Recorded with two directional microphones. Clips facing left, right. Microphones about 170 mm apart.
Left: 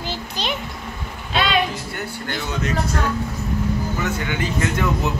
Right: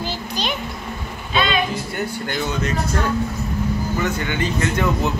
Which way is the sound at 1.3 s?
80° left.